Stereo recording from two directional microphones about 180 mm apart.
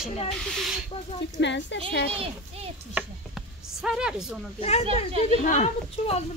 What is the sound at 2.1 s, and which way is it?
Speech, 35° right (ahead or behind).